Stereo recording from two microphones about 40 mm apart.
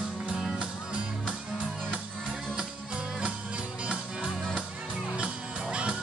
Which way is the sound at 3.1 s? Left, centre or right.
Right.